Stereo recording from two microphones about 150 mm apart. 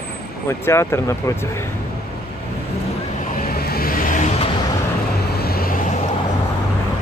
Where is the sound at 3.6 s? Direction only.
90° left; by 4.3 s 65° left (ahead or behind).